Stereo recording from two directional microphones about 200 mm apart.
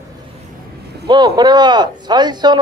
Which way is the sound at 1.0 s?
20° right (ahead or behind).